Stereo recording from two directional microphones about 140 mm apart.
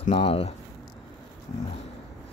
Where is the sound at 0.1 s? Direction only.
45° left (ahead or behind).